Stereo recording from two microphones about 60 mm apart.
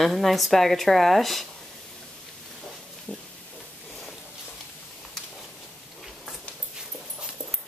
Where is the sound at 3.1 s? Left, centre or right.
Centre.